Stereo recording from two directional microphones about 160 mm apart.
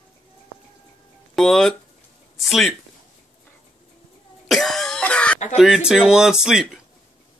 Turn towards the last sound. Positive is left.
turn(degrees=0)  # may be behind; listen again after turning